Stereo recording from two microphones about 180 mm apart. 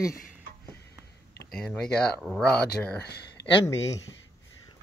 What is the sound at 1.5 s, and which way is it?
Speech, 5° left (ahead or behind).